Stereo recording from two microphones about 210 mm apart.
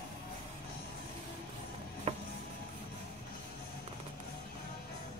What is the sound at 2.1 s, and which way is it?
Music, 30° right (ahead or behind).